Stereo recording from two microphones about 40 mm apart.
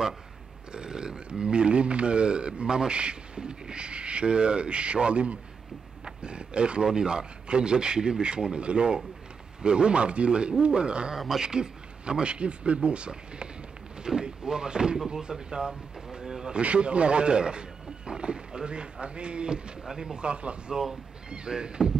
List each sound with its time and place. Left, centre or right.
0.7 s speech: right
11.1 s speech: centre
11.4 s speech: centre
16.6 s speech: right